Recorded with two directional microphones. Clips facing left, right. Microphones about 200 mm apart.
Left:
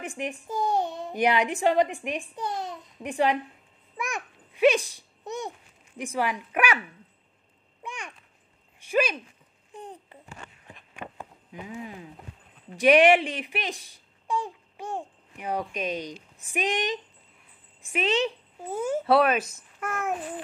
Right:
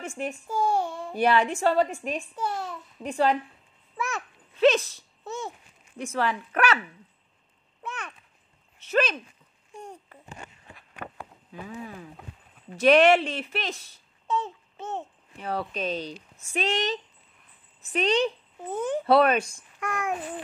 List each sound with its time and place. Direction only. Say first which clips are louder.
0.2 s a woman's voice: right 2 dB; 20° left (ahead or behind)
3.9 s babbling: right 1 dB; 15° left (ahead or behind)
5.9 s a woman's voice: right 1 dB; 15° left (ahead or behind)
7.8 s babbling: right 1 dB; 15° left (ahead or behind)
8.7 s a sound: even; 10° left (ahead or behind)
10.7 s walk: left 1 dB; 15° left (ahead or behind)
12.7 s a child's voice: even; 15° left (ahead or behind)